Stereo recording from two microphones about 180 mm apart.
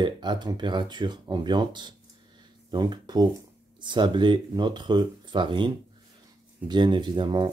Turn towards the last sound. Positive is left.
turn(degrees=-25)  # may be behind; listen again after turning